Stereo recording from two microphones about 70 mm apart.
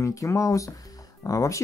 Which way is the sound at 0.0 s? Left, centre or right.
Left.